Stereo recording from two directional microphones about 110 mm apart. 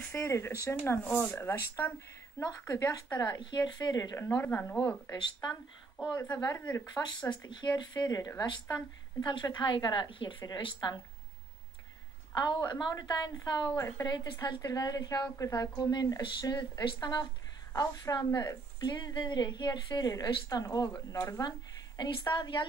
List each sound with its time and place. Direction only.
0.1 s speech: 25° left (ahead or behind)
3.3 s a woman's voice: 40° left (ahead or behind)
4.4 s speech: 20° left (ahead or behind)
5.1 s a woman's voice: 40° left (ahead or behind)
6.6 s speech: 10° left (ahead or behind)
7.0 s a woman's voice: 45° left (ahead or behind)
12.4 s a woman's voice: 40° left (ahead or behind)
13.7 s speech: 30° left (ahead or behind)
14.1 s a woman's voice: 45° left (ahead or behind)